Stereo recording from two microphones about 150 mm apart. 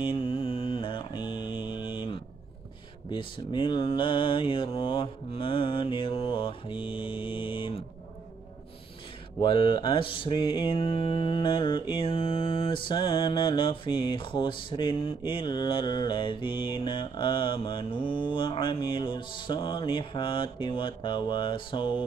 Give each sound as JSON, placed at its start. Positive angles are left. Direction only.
{"t": 0.0, "sound": "mantra", "side_deg": 35}
{"t": 9.4, "sound": "mantra", "side_deg": 35}